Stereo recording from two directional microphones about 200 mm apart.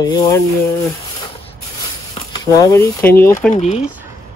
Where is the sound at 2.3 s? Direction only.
15° left (ahead or behind).